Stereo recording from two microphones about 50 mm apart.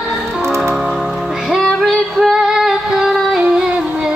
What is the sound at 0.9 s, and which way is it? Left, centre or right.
Music, centre.